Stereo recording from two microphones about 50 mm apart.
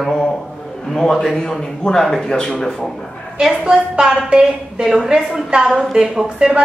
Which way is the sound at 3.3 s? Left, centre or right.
Centre.